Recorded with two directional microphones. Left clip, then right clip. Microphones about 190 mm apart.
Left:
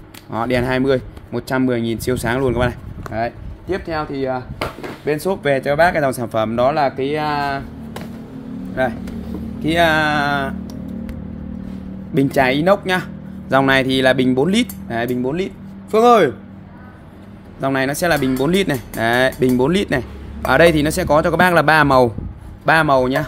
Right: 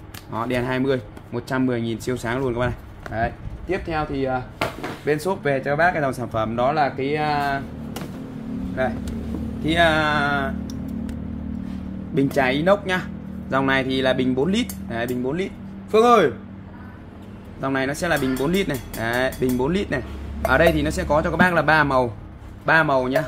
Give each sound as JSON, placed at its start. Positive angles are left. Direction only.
{"t": 0.3, "sound": "speech", "side_deg": 45}
{"t": 3.6, "sound": "speech", "side_deg": 25}
{"t": 8.8, "sound": "speech", "side_deg": 55}
{"t": 9.6, "sound": "speech", "side_deg": 45}
{"t": 12.1, "sound": "speech", "side_deg": 45}
{"t": 17.6, "sound": "speech", "side_deg": 45}